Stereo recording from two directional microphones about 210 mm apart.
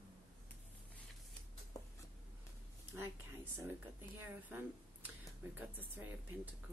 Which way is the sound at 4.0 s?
10° right (ahead or behind).